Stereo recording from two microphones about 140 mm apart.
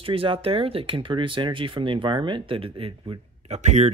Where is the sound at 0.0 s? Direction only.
40° right (ahead or behind).